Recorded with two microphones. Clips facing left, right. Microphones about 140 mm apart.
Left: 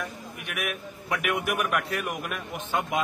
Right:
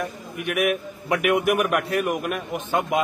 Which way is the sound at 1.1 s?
55° right (ahead or behind).